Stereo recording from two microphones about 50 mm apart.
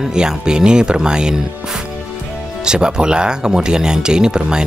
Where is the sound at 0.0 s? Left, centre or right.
Centre.